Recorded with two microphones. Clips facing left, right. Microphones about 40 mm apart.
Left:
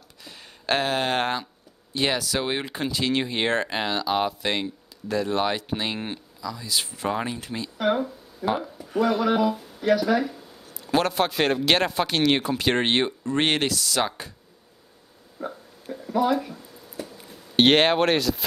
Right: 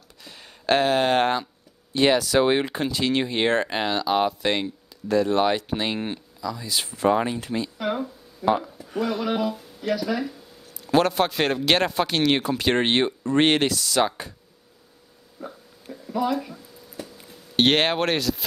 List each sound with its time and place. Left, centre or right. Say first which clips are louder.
0.2 s a sound: even; centre
2.0 s speech: right 6 dB; centre
2.7 s speech: right 1 dB; centre
6.4 s speech: right 1 dB; centre
7.8 s a sound: left 3 dB; centre
8.5 s speech: right 4 dB; centre
9.8 s speech: left 5 dB; centre
10.9 s speech: right 2 dB; centre
15.4 s hiccup: left 4 dB; centre
15.9 s a sound: left 2 dB; centre